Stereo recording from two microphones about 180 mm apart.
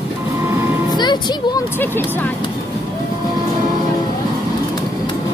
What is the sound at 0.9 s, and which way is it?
Vehicle, 25° left (ahead or behind).